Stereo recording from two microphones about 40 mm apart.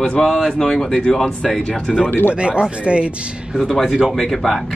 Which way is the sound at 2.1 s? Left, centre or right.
Left.